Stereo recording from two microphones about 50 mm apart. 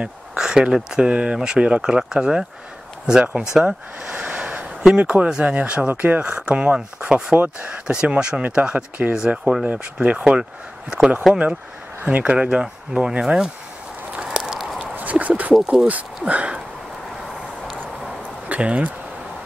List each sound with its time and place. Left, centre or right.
0.0 s speech: centre
7.3 s speech: right
7.8 s speech: centre; by 9.1 s right
9.4 s speech: centre
9.9 s speech: right
11.3 s speech: centre
12.0 s speech: right; by 13.5 s centre
14.1 s a sound: centre
15.0 s a sound: right
16.3 s speech: right
18.5 s speech: right